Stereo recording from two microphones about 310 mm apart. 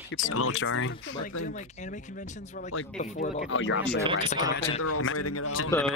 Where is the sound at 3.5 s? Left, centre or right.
Left.